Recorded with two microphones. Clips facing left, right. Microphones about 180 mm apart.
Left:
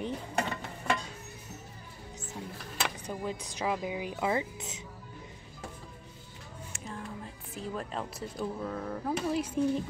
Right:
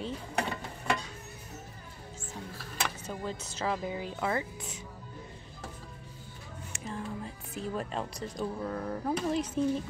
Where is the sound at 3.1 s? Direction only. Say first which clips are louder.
Left 1 dB; 10° left (ahead or behind).